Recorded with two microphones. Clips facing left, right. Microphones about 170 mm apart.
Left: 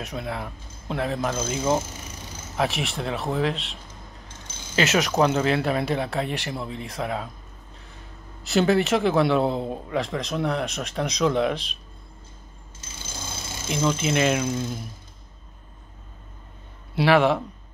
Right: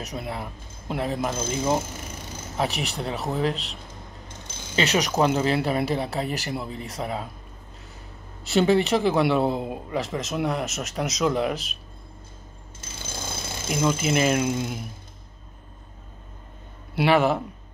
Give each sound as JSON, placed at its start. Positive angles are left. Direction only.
{"t": 0.0, "sound": "a man's voice", "side_deg": 0}
{"t": 4.8, "sound": "a man's voice", "side_deg": 0}
{"t": 8.5, "sound": "a man's voice", "side_deg": 0}
{"t": 13.7, "sound": "speech", "side_deg": -10}
{"t": 16.9, "sound": "a man's voice", "side_deg": 0}